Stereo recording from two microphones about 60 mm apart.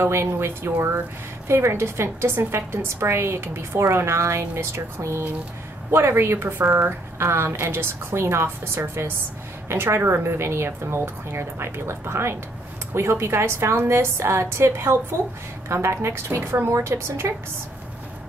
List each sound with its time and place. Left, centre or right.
0.0 s a woman's voice: right